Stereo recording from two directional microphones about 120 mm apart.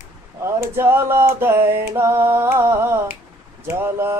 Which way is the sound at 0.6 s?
20° right (ahead or behind).